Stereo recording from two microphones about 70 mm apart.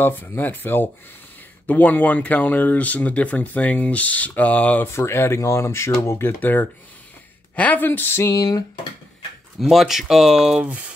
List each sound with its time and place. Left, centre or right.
0.0 s speech: left
4.9 s speech: left
6.4 s speech: left
8.2 s a sound: left
9.6 s speech: centre